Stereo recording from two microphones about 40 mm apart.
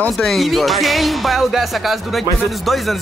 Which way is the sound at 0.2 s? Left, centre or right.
Centre.